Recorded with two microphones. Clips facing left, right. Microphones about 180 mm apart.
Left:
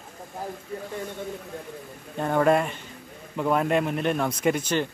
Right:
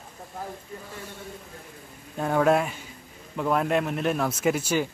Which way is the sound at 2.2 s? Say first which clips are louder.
Left 1 dB; 5° right (ahead or behind).